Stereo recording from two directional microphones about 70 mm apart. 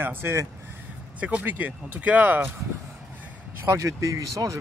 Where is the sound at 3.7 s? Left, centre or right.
Right.